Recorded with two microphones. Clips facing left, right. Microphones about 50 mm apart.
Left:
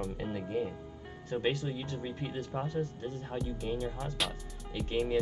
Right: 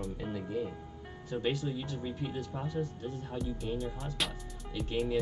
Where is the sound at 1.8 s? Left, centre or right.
Left.